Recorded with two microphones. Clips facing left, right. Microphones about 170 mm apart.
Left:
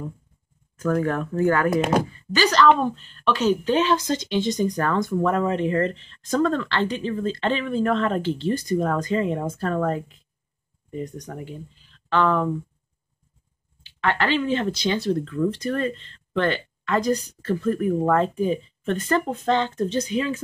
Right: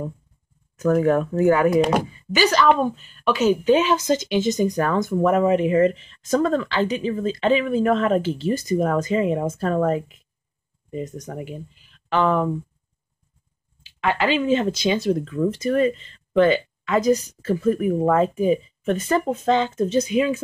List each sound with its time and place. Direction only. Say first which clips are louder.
0.8 s a woman's voice: right 5 dB; 10° right (ahead or behind)
14.0 s a woman's voice: right 2 dB; 10° right (ahead or behind)